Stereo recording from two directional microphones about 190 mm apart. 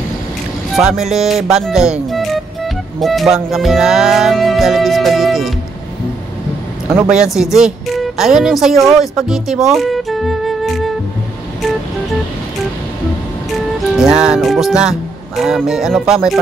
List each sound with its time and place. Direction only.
0.7 s speech: centre (ahead or behind)
6.9 s speech: 5° right (ahead or behind)
13.7 s speech: 5° right (ahead or behind)